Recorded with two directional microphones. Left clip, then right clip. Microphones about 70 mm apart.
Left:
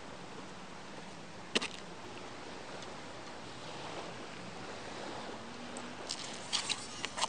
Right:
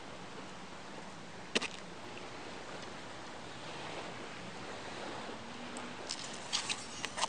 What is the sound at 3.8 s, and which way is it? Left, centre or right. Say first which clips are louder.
Boat: even; right.